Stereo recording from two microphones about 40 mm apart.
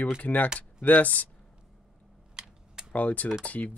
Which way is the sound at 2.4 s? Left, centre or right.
Centre.